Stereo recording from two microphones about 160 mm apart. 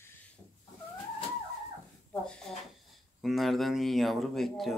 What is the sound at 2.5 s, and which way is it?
Speech, centre (ahead or behind).